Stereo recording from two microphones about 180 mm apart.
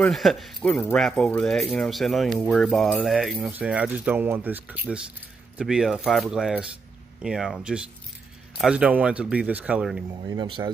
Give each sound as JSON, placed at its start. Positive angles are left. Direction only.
{"t": 0.0, "sound": "speech", "side_deg": 0}
{"t": 10.2, "sound": "speech", "side_deg": -25}